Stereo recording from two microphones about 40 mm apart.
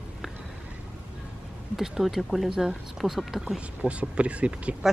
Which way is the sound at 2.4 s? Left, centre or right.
Centre.